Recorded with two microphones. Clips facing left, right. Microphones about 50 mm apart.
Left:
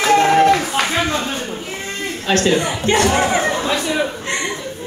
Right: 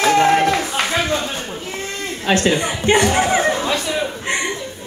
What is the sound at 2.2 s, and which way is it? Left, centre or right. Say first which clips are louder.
Speech: left 1 dB; centre.